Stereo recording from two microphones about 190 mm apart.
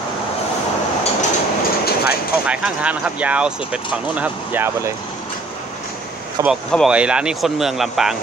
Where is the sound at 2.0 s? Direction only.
5° right (ahead or behind).